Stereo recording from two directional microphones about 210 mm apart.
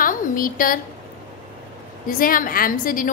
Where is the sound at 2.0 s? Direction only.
40° left (ahead or behind).